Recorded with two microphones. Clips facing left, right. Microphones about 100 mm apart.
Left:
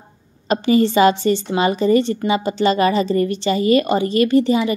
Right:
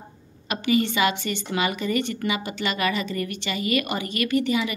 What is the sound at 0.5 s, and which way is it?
A woman's voice, 35° left (ahead or behind).